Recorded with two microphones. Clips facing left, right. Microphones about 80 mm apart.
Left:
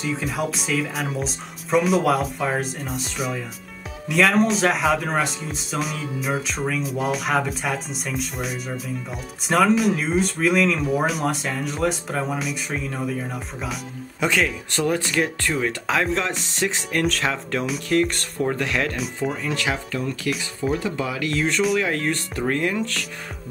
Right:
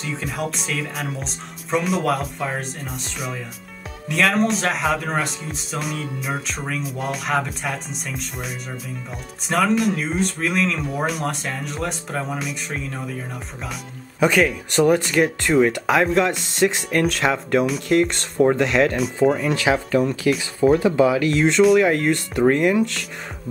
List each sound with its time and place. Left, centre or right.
0.0 s speech: centre
14.2 s speech: centre
14.7 s speech: centre
15.0 s speech: centre
15.4 s speech: centre
19.2 s speech: right
19.9 s speech: right
20.6 s speech: right
20.9 s speech: right